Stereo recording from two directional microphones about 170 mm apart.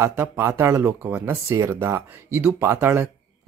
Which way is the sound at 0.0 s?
15° right (ahead or behind).